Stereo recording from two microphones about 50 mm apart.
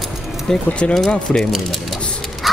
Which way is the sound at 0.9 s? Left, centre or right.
Centre.